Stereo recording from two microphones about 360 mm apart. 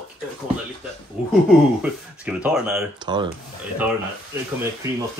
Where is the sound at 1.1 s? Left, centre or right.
Centre.